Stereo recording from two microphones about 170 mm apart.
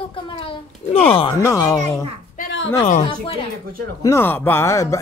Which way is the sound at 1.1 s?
30° left (ahead or behind).